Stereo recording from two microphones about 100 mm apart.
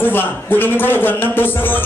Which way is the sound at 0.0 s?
20° left (ahead or behind).